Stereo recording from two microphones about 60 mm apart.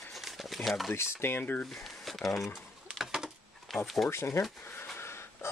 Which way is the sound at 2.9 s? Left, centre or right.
Centre.